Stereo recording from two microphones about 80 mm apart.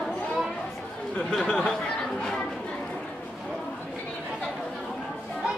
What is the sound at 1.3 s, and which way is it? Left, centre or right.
Speech, centre.